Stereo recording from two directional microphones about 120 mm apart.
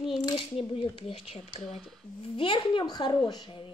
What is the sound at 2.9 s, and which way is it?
Speech, 40° left (ahead or behind).